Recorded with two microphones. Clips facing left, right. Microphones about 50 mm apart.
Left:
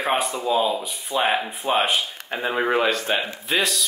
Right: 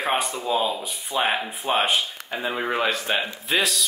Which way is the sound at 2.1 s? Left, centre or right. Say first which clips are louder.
Left 3 dB; left.